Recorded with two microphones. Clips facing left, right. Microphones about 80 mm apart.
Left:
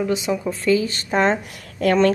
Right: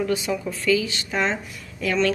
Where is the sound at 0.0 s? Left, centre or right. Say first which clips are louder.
Left 3 dB; left.